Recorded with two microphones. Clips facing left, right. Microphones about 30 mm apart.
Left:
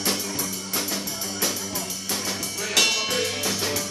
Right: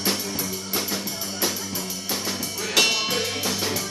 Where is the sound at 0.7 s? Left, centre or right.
Centre.